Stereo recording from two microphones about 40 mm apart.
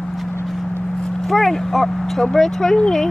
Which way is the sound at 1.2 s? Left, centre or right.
Centre.